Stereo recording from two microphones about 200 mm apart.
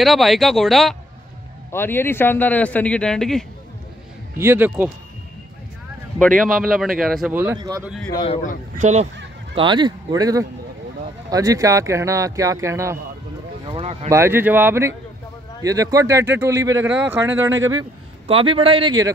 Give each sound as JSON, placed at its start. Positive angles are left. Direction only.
{"t": 0.0, "sound": "speech", "side_deg": 0}
{"t": 1.7, "sound": "a man's voice", "side_deg": 10}
{"t": 4.4, "sound": "speech", "side_deg": -10}
{"t": 6.1, "sound": "speech", "side_deg": 0}
{"t": 7.5, "sound": "a man's voice", "side_deg": -20}
{"t": 8.1, "sound": "speech", "side_deg": 25}
{"t": 8.7, "sound": "speech", "side_deg": -35}
{"t": 9.6, "sound": "a man's voice", "side_deg": -25}
{"t": 18.2, "sound": "a man's voice", "side_deg": -25}